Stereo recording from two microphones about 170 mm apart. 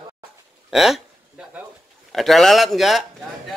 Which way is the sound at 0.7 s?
Centre (ahead or behind).